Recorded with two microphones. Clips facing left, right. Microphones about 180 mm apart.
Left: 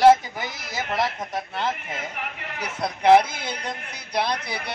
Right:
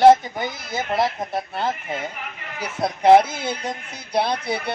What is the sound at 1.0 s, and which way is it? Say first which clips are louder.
Speech: right 3 dB; 30° right (ahead or behind).